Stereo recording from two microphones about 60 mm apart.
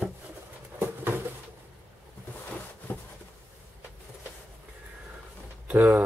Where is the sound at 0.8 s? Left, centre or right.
Right.